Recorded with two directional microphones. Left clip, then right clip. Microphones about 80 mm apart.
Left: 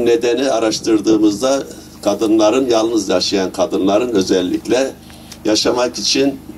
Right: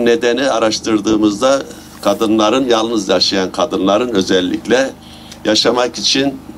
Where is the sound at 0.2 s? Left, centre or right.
Right.